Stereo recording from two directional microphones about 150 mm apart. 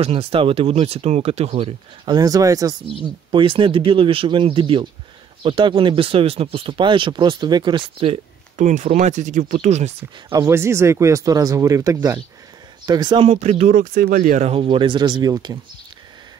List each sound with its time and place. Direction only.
0.0 s speech: 40° right (ahead or behind)
2.0 s speech: 25° right (ahead or behind)
3.3 s speech: 35° right (ahead or behind)
10.3 s speech: 20° right (ahead or behind)
13.2 s speech: 45° right (ahead or behind)
14.5 s speech: 35° right (ahead or behind)